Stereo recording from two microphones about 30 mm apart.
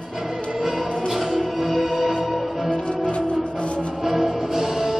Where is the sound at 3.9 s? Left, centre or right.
Centre.